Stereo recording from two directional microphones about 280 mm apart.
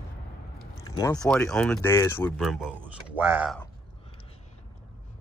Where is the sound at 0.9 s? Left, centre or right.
Centre.